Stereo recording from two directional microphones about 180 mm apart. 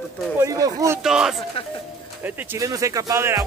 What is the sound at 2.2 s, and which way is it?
Speech, 15° right (ahead or behind).